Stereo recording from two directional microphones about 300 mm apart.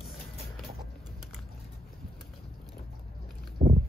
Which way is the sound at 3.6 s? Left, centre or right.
Right.